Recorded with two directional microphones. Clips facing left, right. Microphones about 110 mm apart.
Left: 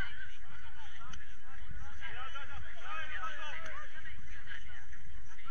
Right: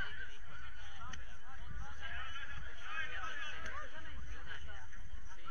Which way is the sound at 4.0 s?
40° right (ahead or behind).